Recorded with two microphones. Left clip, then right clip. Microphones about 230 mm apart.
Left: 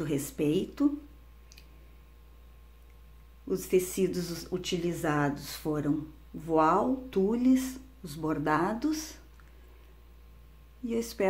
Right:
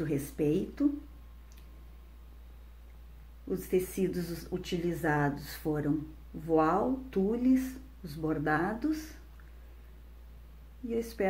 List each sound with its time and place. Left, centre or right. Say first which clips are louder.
0.0 s speech: left 1 dB; centre
3.4 s speech: left 3 dB; centre
10.9 s speech: left 2 dB; centre